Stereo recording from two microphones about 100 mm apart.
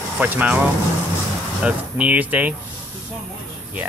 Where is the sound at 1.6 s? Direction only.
15° right (ahead or behind).